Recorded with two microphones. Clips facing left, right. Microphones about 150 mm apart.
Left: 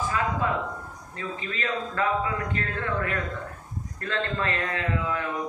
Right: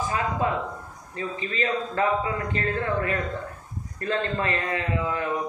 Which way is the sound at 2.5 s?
25° right (ahead or behind).